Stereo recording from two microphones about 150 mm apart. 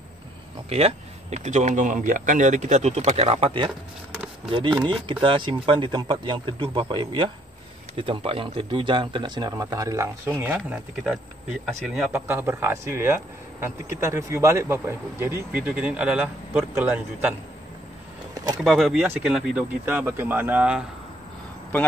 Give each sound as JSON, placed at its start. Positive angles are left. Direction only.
{"t": 0.7, "sound": "speech", "side_deg": -45}
{"t": 11.6, "sound": "speech", "side_deg": -5}
{"t": 12.3, "sound": "speech", "side_deg": -15}
{"t": 18.3, "sound": "a sound", "side_deg": -25}
{"t": 18.6, "sound": "speech", "side_deg": 0}